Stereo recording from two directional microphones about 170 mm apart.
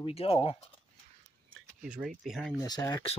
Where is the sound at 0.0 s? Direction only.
35° left (ahead or behind).